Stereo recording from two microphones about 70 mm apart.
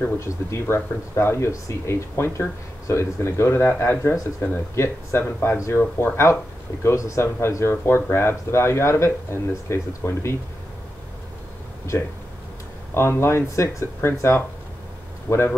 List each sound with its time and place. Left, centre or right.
0.2 s speech: left
12.9 s speech: left